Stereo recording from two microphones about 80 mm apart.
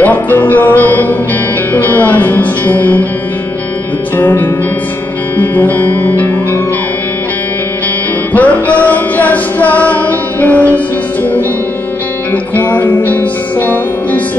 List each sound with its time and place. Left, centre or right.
0.0 s music: left
1.7 s speech: left
4.2 s music: left
8.3 s music: centre
12.5 s music: left